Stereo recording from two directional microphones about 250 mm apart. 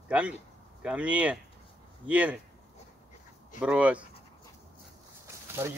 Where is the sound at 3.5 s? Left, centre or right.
Centre.